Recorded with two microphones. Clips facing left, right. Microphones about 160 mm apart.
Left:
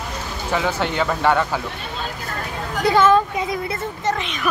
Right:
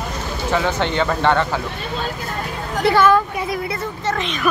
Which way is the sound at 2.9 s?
20° left (ahead or behind).